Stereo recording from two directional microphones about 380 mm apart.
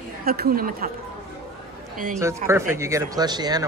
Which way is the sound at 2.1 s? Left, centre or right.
Centre.